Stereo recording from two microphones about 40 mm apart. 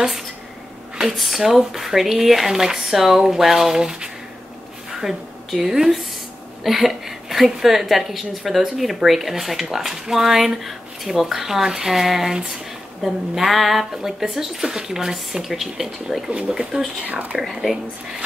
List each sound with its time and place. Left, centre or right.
1.1 s a woman's voice: centre
16.3 s speech: right
17.0 s speech: right
17.4 s speech: centre